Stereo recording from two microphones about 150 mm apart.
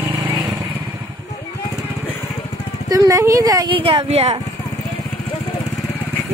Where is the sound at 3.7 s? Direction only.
40° right (ahead or behind).